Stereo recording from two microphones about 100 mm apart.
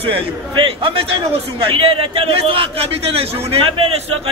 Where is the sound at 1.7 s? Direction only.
70° right (ahead or behind).